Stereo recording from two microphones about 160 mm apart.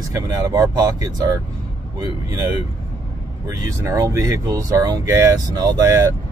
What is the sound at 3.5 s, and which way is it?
Speech, 20° right (ahead or behind).